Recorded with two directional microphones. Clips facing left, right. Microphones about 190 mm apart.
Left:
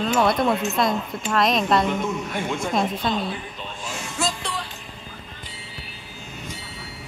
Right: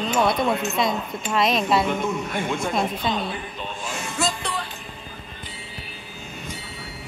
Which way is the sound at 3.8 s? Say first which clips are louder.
Right 1 dB; 55° right (ahead or behind).